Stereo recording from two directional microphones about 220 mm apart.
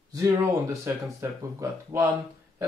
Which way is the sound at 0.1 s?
15° right (ahead or behind).